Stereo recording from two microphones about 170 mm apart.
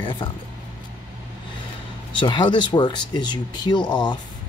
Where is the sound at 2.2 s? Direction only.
25° left (ahead or behind).